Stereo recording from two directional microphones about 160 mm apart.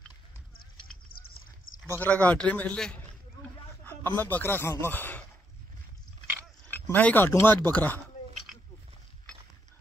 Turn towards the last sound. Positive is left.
turn(degrees=10)  # may be behind; listen again after turning